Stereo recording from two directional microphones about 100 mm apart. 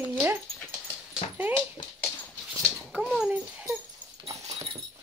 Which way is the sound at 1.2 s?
75° left (ahead or behind).